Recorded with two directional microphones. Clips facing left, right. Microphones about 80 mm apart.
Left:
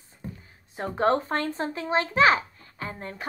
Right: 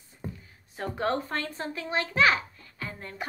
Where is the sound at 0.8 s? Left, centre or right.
Left.